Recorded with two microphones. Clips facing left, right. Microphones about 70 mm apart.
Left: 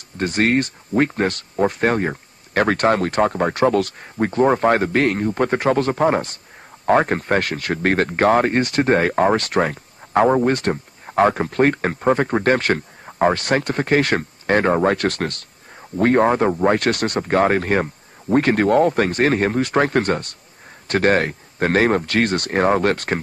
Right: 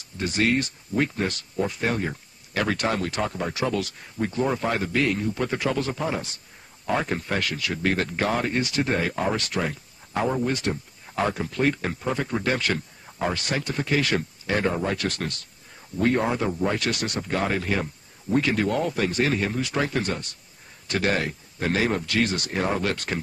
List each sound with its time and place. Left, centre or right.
0.2 s speech: left